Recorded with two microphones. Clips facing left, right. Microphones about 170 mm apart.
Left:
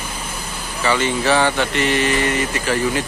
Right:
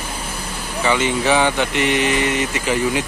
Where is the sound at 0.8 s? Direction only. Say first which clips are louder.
Right 1 dB; 15° right (ahead or behind).